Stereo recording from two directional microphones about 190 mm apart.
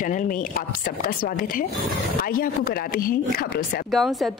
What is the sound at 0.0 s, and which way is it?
Speech, 45° left (ahead or behind).